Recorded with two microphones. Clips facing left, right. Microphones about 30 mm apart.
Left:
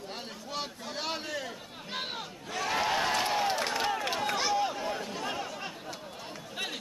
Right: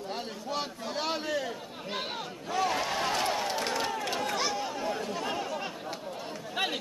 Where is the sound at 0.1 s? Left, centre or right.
Centre.